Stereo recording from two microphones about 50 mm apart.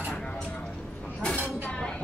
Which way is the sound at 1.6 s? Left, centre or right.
Centre.